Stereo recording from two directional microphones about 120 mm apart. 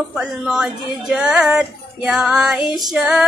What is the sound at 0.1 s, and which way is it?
Female singing, 5° right (ahead or behind).